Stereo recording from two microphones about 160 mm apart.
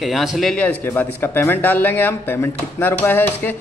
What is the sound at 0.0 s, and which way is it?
Speech, centre (ahead or behind).